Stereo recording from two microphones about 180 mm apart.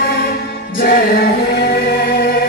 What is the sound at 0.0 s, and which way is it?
Music, 60° left (ahead or behind).